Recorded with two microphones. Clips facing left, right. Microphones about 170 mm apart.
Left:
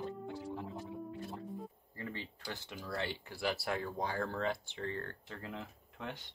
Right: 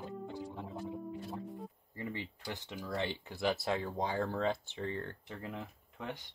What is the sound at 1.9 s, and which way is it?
Speech, 15° right (ahead or behind).